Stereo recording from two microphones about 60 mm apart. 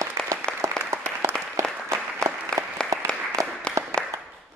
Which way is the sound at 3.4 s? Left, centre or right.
Right.